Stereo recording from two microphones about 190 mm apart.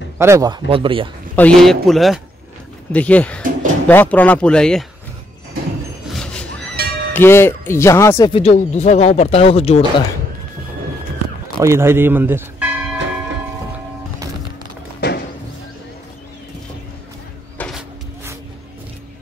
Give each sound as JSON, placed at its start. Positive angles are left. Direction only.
{"t": 0.2, "sound": "speech", "side_deg": -15}
{"t": 1.3, "sound": "a man's voice", "side_deg": 5}
{"t": 6.1, "sound": "a sound", "side_deg": 5}
{"t": 7.2, "sound": "speech", "side_deg": 10}
{"t": 8.3, "sound": "speech", "side_deg": 35}
{"t": 11.5, "sound": "speech", "side_deg": -15}
{"t": 15.0, "sound": "music", "side_deg": 55}
{"t": 17.6, "sound": "a sound", "side_deg": 0}